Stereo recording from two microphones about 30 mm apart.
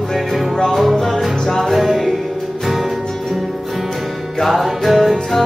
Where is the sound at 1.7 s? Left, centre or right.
Centre.